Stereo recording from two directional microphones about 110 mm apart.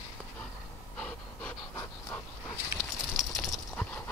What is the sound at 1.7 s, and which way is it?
Pant, 25° left (ahead or behind).